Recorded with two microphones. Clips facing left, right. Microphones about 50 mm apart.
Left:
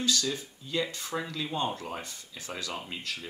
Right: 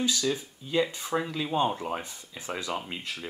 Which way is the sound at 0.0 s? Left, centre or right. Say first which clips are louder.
Right 2 dB; centre.